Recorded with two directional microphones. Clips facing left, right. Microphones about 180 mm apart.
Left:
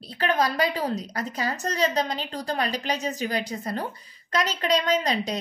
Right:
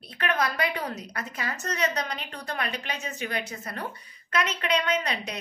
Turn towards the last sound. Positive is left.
turn(degrees=35)  # may be behind; listen again after turning